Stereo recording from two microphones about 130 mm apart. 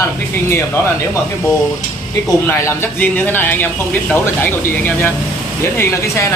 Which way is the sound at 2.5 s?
15° left (ahead or behind).